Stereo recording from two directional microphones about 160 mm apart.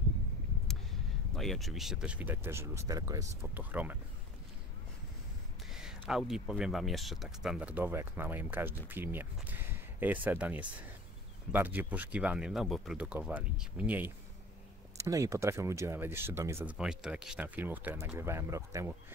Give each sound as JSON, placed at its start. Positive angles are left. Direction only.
{"t": 1.3, "sound": "speech", "side_deg": 0}
{"t": 3.5, "sound": "speech", "side_deg": -10}
{"t": 5.7, "sound": "speech", "side_deg": -5}
{"t": 16.7, "sound": "speech", "side_deg": -5}